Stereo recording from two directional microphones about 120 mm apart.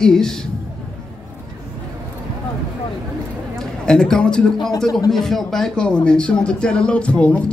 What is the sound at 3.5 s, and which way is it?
A man's voice, 5° left (ahead or behind).